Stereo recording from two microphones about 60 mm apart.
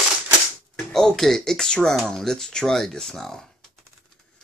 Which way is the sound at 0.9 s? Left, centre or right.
Centre.